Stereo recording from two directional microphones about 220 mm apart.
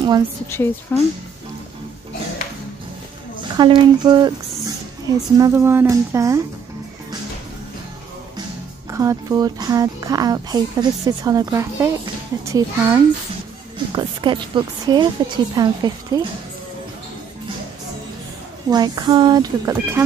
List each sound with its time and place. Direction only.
0.5 s speech: 10° left (ahead or behind)
3.5 s a woman's voice: 20° right (ahead or behind)
8.9 s a woman's voice: 15° right (ahead or behind)
18.7 s a woman's voice: 20° right (ahead or behind)